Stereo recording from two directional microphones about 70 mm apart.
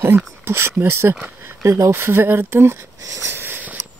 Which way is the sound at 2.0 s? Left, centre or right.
Right.